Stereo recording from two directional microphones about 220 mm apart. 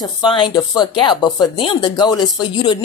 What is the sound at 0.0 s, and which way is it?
Speech, 20° left (ahead or behind).